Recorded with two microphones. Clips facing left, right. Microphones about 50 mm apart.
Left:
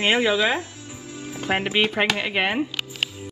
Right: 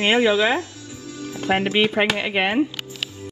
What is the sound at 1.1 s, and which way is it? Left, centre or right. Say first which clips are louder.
Music: right 2 dB; left.